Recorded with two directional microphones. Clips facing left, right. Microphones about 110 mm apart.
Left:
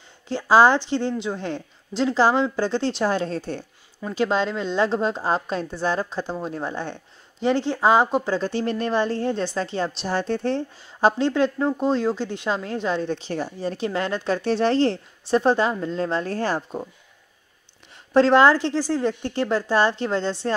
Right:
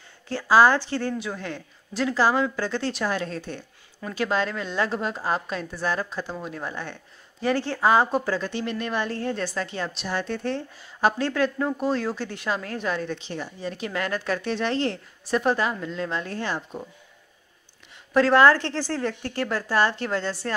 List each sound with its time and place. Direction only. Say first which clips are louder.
0.3 s a woman's voice: left 2 dB; 25° left (ahead or behind)
4.1 s a woman's voice: left 3 dB; 25° left (ahead or behind)
13.2 s speech: left 5 dB; 40° left (ahead or behind)
18.1 s a woman's voice: left 2 dB; 25° left (ahead or behind)